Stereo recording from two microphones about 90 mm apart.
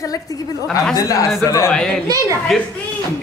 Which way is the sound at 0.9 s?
40° left (ahead or behind).